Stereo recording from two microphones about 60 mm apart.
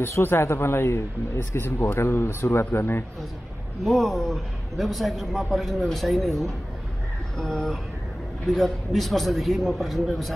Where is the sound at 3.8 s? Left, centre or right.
Centre.